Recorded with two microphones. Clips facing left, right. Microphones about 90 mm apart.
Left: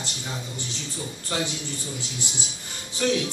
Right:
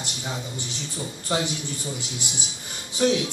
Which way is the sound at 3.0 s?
20° right (ahead or behind).